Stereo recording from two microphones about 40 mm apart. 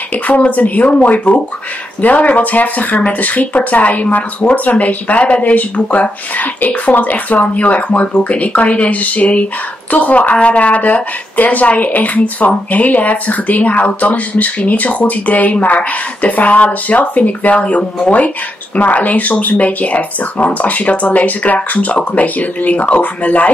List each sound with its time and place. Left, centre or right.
0.1 s speech: left